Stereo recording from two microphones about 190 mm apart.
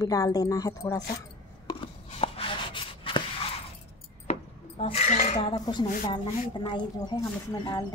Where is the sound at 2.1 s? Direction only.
30° left (ahead or behind).